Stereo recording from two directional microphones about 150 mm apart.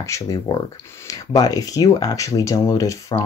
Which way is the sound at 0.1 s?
25° left (ahead or behind).